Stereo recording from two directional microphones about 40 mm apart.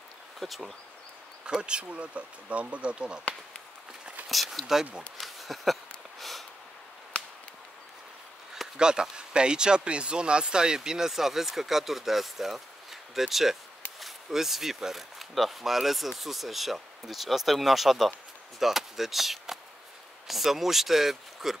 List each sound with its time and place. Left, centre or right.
0.4 s speech: centre
1.4 s speech: right
4.3 s speech: centre
5.2 s a sound: centre
8.7 s speech: centre